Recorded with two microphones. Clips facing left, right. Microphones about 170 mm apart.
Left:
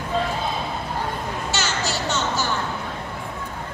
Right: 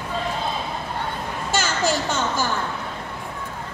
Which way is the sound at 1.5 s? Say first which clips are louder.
Right 6 dB; 50° right (ahead or behind).